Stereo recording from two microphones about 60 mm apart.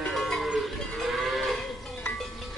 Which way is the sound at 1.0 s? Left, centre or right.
Centre.